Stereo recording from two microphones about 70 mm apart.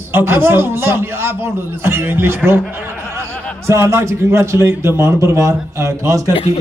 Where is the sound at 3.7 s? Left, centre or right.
Right.